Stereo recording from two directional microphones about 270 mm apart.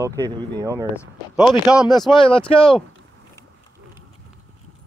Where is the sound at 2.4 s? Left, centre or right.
Centre.